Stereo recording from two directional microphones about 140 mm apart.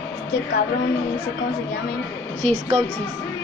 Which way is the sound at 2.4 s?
50° right (ahead or behind).